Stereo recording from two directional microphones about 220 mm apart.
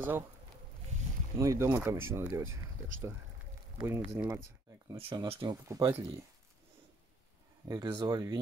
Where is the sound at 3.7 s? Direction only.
10° right (ahead or behind).